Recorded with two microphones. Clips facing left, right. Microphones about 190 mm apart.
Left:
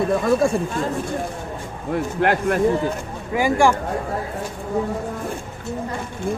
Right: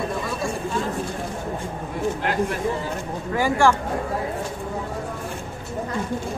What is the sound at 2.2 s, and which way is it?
Speech, 60° left (ahead or behind).